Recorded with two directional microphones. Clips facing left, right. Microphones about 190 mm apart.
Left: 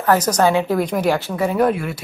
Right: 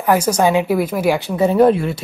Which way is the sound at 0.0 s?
10° right (ahead or behind).